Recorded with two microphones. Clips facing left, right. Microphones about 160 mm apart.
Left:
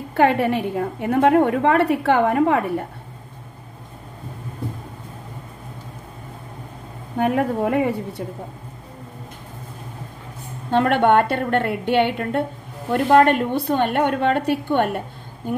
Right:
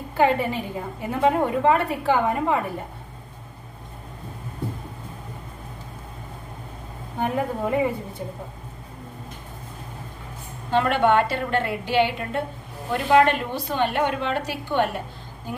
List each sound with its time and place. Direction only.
0.1 s a woman's voice: 65° left (ahead or behind)
7.2 s a woman's voice: 65° left (ahead or behind)
10.7 s a woman's voice: 55° left (ahead or behind)